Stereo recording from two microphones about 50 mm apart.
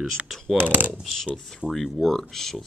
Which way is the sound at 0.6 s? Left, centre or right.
Right.